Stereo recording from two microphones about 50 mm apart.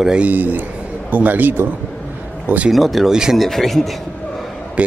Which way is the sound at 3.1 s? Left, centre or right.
Centre.